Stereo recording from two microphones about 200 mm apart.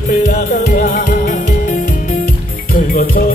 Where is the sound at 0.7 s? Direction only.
40° left (ahead or behind).